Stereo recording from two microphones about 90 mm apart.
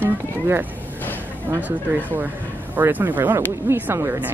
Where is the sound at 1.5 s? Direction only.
20° right (ahead or behind).